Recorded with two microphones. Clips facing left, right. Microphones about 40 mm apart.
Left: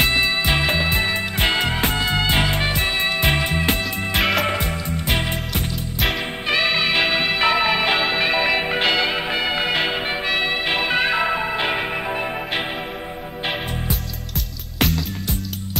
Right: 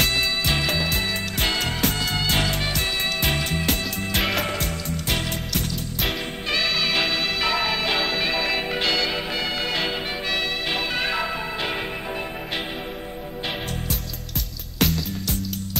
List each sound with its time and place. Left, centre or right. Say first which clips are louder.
0.0 s music: left 4 dB; left
4.2 s music: left 5 dB; centre
4.5 s music: left 4 dB; left
14.8 s music: left 2 dB; centre